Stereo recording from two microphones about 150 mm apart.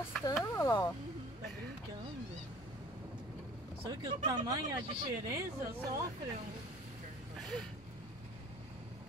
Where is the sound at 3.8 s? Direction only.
30° right (ahead or behind).